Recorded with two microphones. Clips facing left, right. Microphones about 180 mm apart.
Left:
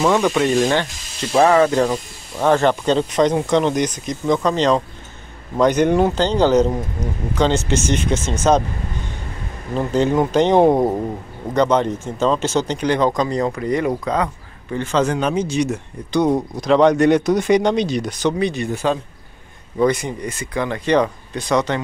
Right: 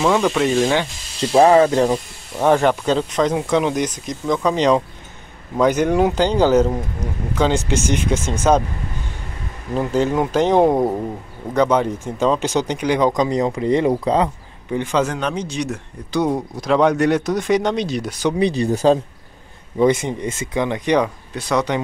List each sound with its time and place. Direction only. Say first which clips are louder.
0.0 s speech: even; centre (ahead or behind)
1.3 s speech: right 2 dB; 25° right (ahead or behind)
2.3 s speech: even; 10° right (ahead or behind)
9.8 s speech: left 1 dB; 5° right (ahead or behind); by 14.3 s 25° right (ahead or behind)
14.7 s speech: left 1 dB; 15° right (ahead or behind)
15.1 s speech: left 4 dB; 5° left (ahead or behind)
18.4 s speech: right 4 dB; 35° right (ahead or behind)
19.8 s speech: right 2 dB; 25° right (ahead or behind)